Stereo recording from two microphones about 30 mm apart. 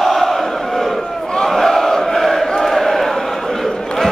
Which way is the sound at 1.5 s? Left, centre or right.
Centre.